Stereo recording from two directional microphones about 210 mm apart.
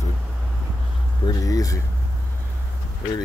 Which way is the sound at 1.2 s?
15° left (ahead or behind).